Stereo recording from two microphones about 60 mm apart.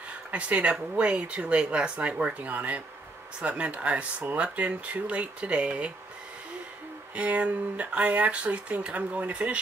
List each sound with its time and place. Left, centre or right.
0.3 s speech: right
7.2 s speech: right